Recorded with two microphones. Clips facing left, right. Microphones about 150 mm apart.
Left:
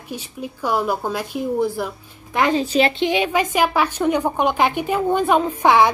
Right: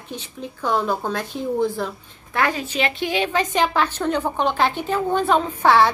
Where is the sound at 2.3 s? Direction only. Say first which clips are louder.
Left 4 dB; 20° left (ahead or behind).